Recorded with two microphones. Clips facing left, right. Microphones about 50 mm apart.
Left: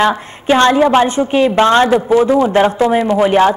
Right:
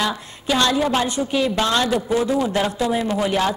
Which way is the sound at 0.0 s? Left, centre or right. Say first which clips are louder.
Left 10 dB; left.